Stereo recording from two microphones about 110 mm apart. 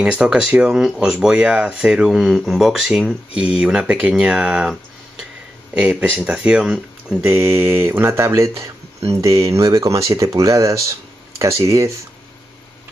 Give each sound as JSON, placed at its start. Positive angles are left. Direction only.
{"t": 0.0, "sound": "speech", "side_deg": -10}